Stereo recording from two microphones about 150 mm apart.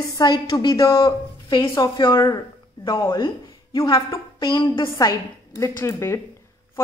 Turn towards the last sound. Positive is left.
turn(degrees=20)  # may be behind; listen again after turning